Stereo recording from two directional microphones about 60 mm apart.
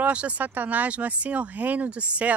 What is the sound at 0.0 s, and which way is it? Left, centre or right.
Speech, right.